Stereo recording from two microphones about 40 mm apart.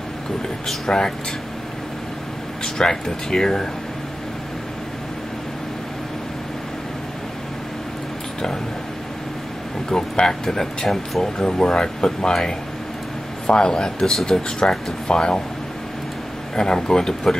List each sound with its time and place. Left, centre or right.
0.8 s speech: centre
2.6 s speech: centre
9.8 s speech: centre
11.3 s speech: left
16.5 s speech: centre